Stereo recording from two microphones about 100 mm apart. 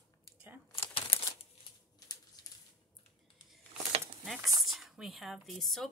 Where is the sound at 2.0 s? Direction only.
45° left (ahead or behind).